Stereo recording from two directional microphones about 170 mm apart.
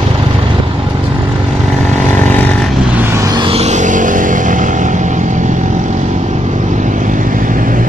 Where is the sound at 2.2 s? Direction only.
10° left (ahead or behind).